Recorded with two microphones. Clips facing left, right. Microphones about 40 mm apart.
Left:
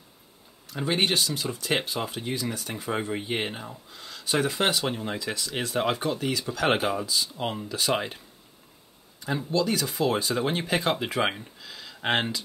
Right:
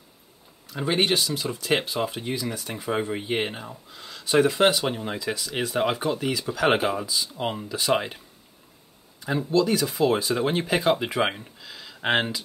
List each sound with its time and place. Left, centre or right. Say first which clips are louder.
0.7 s speech: right 2 dB; centre
9.2 s speech: right 4 dB; centre